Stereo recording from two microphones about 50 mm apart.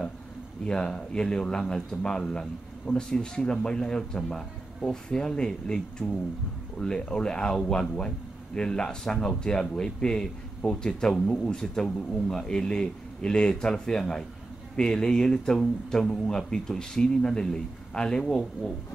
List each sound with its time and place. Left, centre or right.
0.7 s speech: centre